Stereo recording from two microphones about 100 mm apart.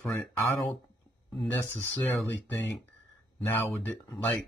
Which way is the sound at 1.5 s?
20° left (ahead or behind).